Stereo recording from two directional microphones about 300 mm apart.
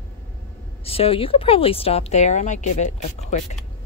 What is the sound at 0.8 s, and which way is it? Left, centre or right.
Speech, centre.